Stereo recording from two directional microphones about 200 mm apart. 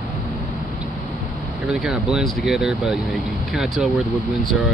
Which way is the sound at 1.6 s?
Centre (ahead or behind).